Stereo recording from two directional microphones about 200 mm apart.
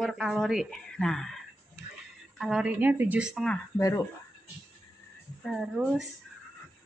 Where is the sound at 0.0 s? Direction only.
Centre (ahead or behind).